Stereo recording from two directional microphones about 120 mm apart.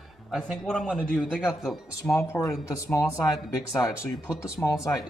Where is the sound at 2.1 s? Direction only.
25° left (ahead or behind).